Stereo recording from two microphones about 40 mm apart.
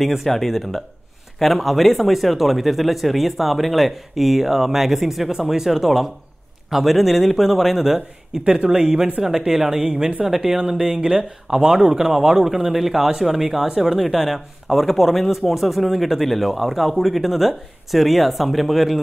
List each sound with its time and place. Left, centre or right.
0.0 s speech: centre
8.5 s a woman's voice: centre